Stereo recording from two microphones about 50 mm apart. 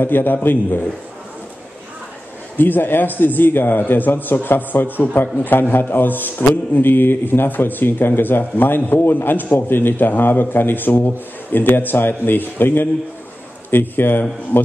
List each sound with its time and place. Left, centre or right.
0.0 s a man's voice: left
2.5 s a man's voice: left